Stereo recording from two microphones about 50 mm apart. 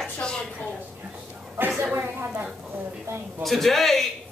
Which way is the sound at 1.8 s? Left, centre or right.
Right.